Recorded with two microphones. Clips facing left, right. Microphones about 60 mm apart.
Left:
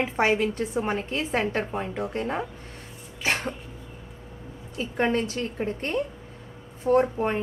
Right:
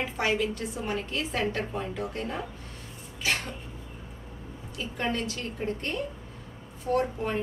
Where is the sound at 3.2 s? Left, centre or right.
Left.